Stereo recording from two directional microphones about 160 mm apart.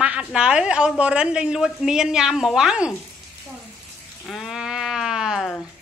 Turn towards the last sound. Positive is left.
turn(degrees=0)  # may be behind; listen again after turning